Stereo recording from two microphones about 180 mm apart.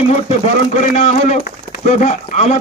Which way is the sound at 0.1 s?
40° left (ahead or behind).